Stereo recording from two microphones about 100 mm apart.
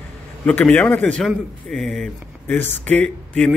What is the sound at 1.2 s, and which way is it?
Speech, 5° left (ahead or behind).